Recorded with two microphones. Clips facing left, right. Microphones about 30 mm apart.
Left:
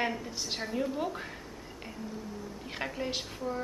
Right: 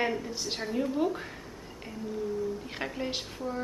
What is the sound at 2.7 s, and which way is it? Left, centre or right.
Speech, centre.